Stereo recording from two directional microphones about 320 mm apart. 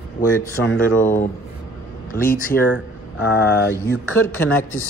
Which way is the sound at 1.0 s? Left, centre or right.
Centre.